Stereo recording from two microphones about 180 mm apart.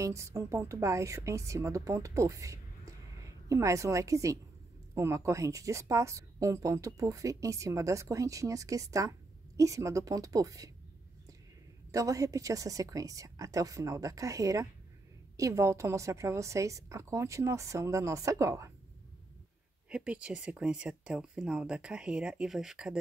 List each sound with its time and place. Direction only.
0.0 s a woman's voice: 15° right (ahead or behind)
11.9 s a woman's voice: 20° right (ahead or behind)
19.9 s speech: 5° right (ahead or behind)